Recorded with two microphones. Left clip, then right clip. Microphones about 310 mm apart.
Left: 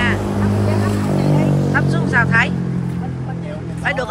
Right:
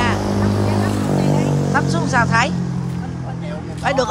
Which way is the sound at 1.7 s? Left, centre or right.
Centre.